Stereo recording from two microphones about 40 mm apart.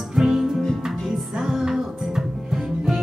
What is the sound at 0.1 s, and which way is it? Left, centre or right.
Music, centre.